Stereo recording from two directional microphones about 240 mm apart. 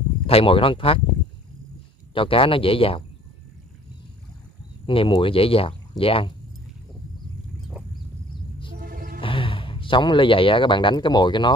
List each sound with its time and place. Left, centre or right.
0.3 s speech: left
2.1 s speech: left
4.8 s speech: left
8.7 s music: right
9.2 s speech: left